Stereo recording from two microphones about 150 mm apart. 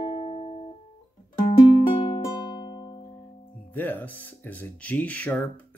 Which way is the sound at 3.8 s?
10° left (ahead or behind).